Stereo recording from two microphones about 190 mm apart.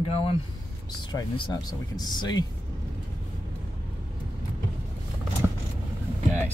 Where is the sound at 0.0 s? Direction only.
30° left (ahead or behind).